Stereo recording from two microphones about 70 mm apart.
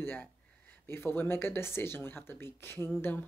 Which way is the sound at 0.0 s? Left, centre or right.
Left.